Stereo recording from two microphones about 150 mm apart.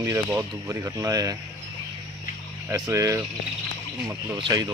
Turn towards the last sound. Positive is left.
turn(degrees=-30)  # may be behind; listen again after turning